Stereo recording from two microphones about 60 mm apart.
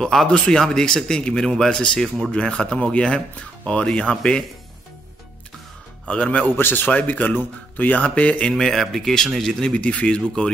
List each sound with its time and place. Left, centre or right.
0.0 s speech: centre
6.0 s speech: centre
6.5 s speech: left
8.5 s speech: centre
9.8 s speech: centre